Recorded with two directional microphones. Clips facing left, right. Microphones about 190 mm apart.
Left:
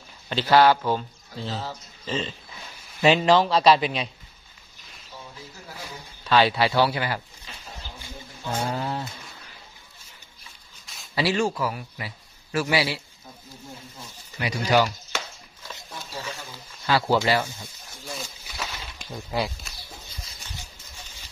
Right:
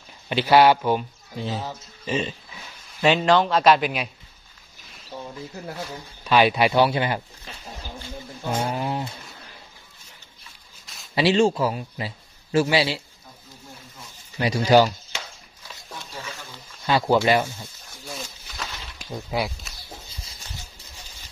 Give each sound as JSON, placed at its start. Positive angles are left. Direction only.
{"t": 0.3, "sound": "speech", "side_deg": -15}
{"t": 3.0, "sound": "a man's voice", "side_deg": 5}
{"t": 6.2, "sound": "speech", "side_deg": -15}
{"t": 8.5, "sound": "a sound", "side_deg": -15}
{"t": 11.1, "sound": "speech", "side_deg": -25}
{"t": 14.4, "sound": "speech", "side_deg": -30}
{"t": 16.8, "sound": "speech", "side_deg": -20}
{"t": 18.0, "sound": "a sound", "side_deg": 0}
{"t": 19.1, "sound": "speech", "side_deg": -10}